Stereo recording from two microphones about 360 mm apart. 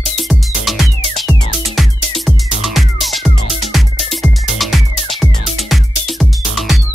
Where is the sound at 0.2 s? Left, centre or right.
Centre.